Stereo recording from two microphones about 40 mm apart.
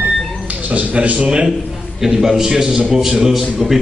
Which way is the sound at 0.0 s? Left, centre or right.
Right.